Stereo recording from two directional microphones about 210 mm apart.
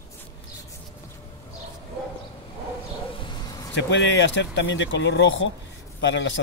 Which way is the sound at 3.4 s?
20° left (ahead or behind).